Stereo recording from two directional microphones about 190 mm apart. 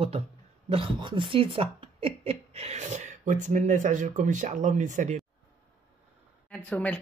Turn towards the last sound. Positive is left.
turn(degrees=10)  # may be behind; listen again after turning